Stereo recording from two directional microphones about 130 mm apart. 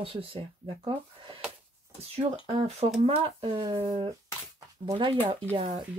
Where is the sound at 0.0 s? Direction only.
45° right (ahead or behind).